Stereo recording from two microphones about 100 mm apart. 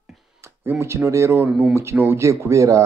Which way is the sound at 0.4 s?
25° right (ahead or behind).